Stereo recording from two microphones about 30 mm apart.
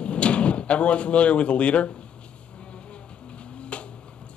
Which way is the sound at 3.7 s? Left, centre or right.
Left.